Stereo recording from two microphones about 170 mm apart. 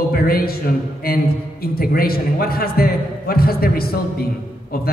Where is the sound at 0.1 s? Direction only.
60° left (ahead or behind).